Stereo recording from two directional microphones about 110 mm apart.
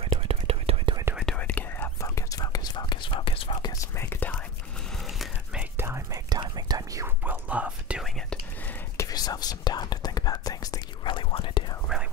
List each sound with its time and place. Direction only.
0.0 s whispering: 60° right (ahead or behind)
1.1 s whispering: 5° left (ahead or behind)
2.0 s whispering: 30° left (ahead or behind); by 3.5 s 55° left (ahead or behind)
3.6 s whispering: 30° left (ahead or behind)
4.9 s a sound: centre (ahead or behind)
5.6 s whispering: 20° right (ahead or behind)
6.2 s whispering: 40° right (ahead or behind)
7.2 s whispering: 15° right (ahead or behind)
8.9 s whispering: 35° left (ahead or behind)
11.1 s whispering: 50° left (ahead or behind)
11.9 s whispering: 5° right (ahead or behind)